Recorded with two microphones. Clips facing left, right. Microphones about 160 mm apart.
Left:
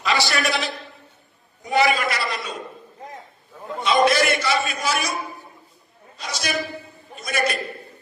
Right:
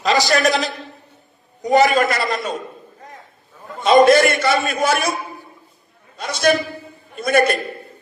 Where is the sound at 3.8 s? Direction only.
50° right (ahead or behind).